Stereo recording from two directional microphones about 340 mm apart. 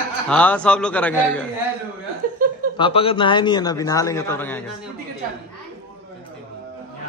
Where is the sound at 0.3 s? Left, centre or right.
Centre.